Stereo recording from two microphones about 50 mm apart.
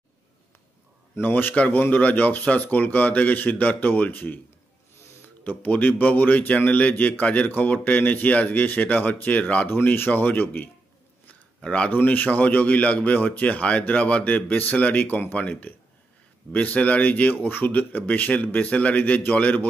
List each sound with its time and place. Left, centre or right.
1.2 s speech: left
5.4 s speech: left
9.8 s speech: left
11.6 s speech: left
11.9 s speech: left